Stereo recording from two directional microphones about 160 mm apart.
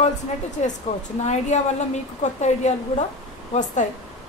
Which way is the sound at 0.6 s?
45° left (ahead or behind).